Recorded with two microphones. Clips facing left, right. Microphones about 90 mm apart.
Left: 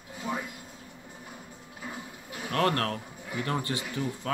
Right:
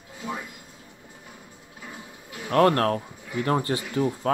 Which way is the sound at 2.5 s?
35° right (ahead or behind).